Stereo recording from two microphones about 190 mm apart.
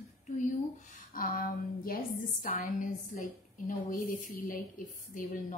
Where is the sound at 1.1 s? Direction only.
45° left (ahead or behind).